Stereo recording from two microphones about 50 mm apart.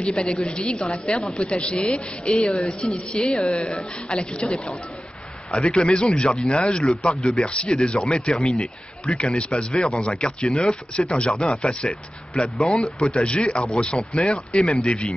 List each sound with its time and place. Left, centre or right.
0.1 s a woman's voice: centre
6.5 s a woman's voice: centre